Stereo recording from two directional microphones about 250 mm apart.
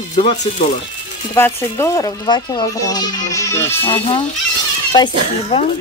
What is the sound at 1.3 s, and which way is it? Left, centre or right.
Speech, centre.